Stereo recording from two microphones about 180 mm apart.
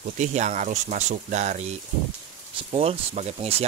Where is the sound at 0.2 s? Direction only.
40° right (ahead or behind).